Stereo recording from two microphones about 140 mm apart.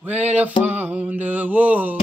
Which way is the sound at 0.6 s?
10° right (ahead or behind).